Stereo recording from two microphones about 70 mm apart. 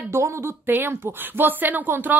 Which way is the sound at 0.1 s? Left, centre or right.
Right.